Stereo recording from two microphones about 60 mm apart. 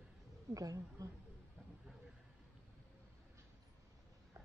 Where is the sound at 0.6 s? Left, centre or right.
Right.